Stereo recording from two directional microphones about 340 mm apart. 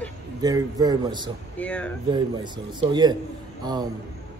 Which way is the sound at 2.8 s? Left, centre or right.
Centre.